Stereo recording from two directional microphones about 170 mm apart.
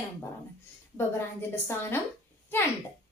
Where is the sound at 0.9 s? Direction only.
15° left (ahead or behind).